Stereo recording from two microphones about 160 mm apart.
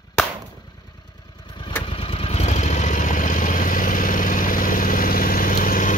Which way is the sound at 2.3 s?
45° left (ahead or behind).